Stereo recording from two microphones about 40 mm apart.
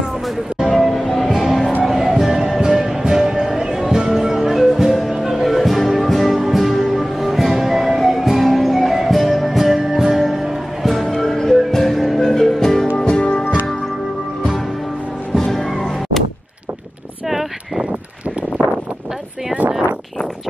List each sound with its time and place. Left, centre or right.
0.6 s music: centre
12.2 s music: centre
12.9 s music: left
15.5 s music: centre
17.3 s a sound: centre